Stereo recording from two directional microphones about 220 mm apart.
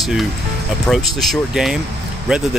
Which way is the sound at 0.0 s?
Centre (ahead or behind).